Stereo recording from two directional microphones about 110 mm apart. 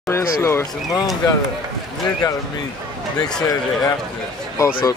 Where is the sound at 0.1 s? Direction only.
25° left (ahead or behind).